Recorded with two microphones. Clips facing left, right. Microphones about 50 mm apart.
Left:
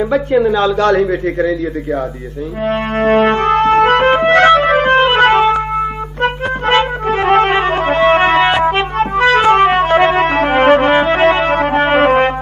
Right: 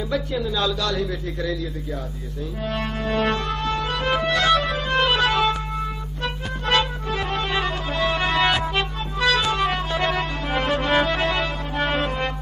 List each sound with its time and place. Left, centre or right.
0.1 s a man's voice: left
2.6 s music: left
7.2 s music: left
7.5 s music: left
8.4 s music: left
10.9 s music: left
11.5 s music: left
11.8 s brass instrument: left